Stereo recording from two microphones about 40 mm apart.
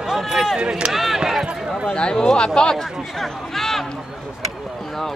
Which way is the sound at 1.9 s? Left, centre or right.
Left.